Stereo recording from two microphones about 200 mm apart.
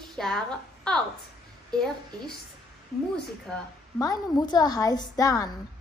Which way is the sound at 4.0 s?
20° left (ahead or behind).